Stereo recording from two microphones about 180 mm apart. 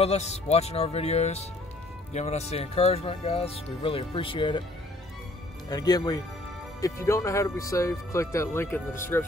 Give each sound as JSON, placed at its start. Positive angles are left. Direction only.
{"t": 0.0, "sound": "speech", "side_deg": 35}
{"t": 5.7, "sound": "speech", "side_deg": 20}